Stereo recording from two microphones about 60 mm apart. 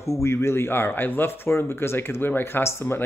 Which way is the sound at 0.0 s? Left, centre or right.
Left.